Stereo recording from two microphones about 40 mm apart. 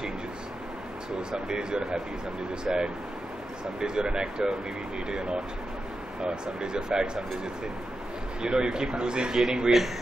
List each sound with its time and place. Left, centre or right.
1.3 s speech: centre
8.4 s speech: centre